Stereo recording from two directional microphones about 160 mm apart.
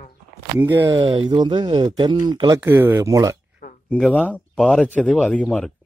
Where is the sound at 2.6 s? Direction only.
15° right (ahead or behind).